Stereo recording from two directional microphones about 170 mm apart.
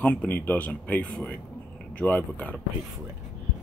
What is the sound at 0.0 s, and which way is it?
Speech, 10° left (ahead or behind).